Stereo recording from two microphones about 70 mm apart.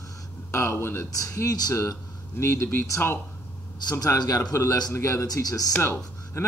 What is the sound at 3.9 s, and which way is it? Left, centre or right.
Speech, left.